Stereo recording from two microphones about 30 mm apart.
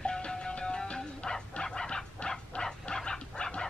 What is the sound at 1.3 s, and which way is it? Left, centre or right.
Dog, left.